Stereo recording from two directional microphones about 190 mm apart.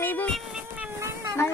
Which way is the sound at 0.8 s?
15° right (ahead or behind).